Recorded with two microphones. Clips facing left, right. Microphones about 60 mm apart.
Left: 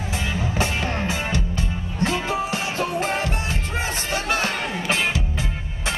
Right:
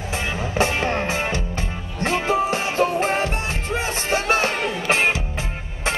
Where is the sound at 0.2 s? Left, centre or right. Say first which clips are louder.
Right 3 dB; right.